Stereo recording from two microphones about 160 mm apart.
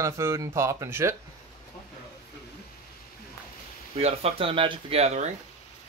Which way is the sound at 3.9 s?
40° right (ahead or behind).